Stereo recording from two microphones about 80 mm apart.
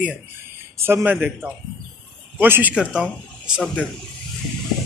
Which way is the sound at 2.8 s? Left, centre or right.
Centre.